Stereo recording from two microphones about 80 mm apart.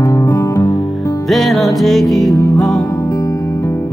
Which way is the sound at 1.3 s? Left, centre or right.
Centre.